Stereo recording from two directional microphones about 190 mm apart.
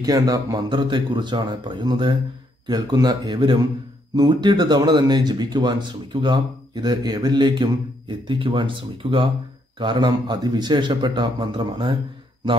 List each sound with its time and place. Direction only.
0.0 s speech: 20° right (ahead or behind)